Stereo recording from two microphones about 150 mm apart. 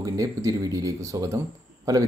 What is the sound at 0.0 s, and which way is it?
Speech, 20° right (ahead or behind).